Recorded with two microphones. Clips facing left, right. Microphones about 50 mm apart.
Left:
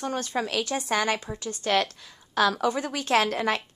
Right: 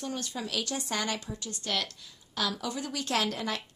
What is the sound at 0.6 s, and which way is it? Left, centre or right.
Speech, left.